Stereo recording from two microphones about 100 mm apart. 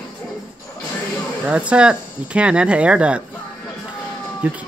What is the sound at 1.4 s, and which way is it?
Speech, 10° right (ahead or behind).